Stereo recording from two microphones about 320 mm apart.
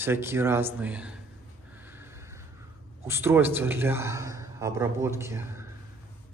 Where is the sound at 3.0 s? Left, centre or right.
Centre.